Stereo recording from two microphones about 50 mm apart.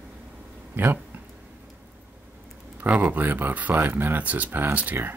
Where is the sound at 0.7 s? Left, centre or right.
Right.